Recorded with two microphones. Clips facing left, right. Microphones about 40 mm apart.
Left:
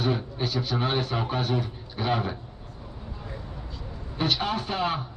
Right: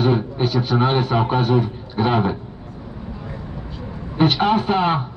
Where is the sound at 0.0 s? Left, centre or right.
Right.